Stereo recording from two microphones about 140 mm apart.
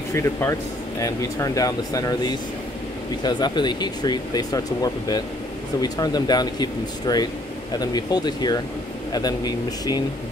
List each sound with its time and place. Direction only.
0.1 s speech: 20° left (ahead or behind)